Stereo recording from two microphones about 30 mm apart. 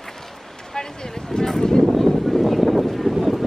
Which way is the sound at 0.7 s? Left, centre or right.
Left.